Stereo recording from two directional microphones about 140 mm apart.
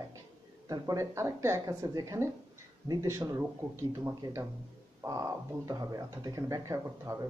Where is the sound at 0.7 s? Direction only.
25° right (ahead or behind).